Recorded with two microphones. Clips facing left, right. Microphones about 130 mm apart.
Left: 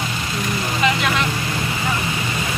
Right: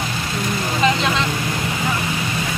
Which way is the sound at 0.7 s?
25° right (ahead or behind).